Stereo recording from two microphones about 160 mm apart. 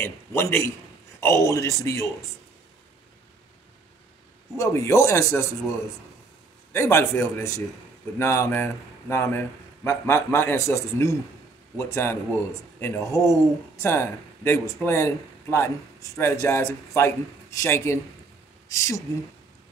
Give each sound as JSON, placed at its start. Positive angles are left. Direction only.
{"t": 0.0, "sound": "speech", "side_deg": 15}
{"t": 4.6, "sound": "speech", "side_deg": 15}
{"t": 6.7, "sound": "speech", "side_deg": 15}